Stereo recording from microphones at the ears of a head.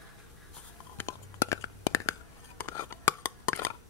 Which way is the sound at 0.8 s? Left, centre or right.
Left.